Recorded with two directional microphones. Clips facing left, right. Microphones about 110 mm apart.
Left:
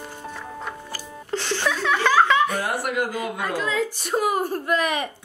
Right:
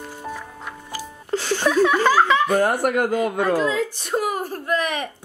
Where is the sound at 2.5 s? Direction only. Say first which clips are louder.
Right 7 dB; 50° right (ahead or behind).